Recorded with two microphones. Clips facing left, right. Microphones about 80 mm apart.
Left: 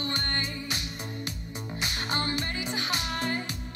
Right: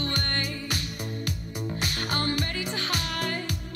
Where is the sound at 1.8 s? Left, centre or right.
Left.